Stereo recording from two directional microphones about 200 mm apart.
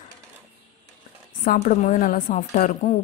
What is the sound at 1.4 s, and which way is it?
Speech, 40° left (ahead or behind).